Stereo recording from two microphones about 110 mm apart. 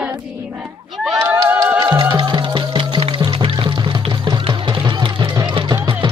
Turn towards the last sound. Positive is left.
turn(degrees=-45)  # may be behind; listen again after turning